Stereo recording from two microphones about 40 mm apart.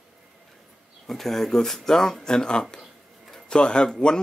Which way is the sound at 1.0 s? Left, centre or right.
Centre.